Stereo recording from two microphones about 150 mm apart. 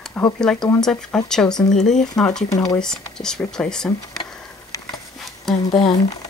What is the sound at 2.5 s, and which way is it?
Speech, 20° left (ahead or behind).